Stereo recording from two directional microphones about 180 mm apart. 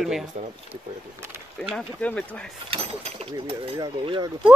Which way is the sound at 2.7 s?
35° right (ahead or behind).